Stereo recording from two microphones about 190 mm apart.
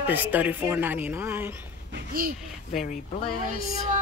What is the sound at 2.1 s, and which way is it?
Speech, 50° right (ahead or behind).